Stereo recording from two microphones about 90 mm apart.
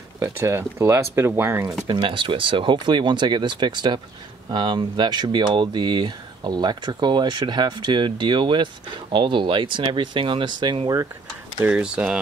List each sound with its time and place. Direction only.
0.2 s speech: 30° right (ahead or behind)
1.9 s speech: 65° right (ahead or behind)
11.7 s speech: 10° right (ahead or behind)